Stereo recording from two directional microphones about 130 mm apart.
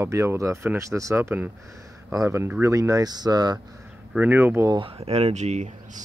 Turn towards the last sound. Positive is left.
turn(degrees=-60)  # may be behind; listen again after turning